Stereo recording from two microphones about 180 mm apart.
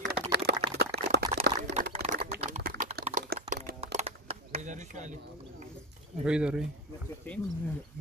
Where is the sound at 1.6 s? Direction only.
45° right (ahead or behind).